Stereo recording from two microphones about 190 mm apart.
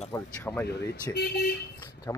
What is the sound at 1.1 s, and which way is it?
Speech, 15° left (ahead or behind).